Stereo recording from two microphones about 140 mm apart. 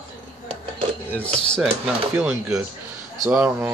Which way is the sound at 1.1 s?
10° left (ahead or behind).